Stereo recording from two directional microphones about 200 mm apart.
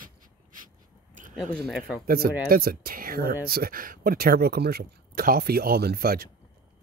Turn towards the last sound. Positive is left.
turn(degrees=-50)  # may be behind; listen again after turning